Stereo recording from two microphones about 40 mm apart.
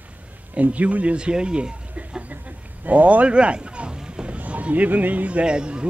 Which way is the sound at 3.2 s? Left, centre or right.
Right.